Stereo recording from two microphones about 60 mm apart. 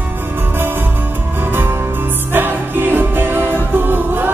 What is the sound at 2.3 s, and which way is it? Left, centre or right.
Music, right.